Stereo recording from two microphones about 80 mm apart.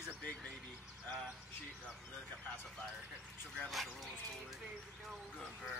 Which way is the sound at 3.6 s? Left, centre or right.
Centre.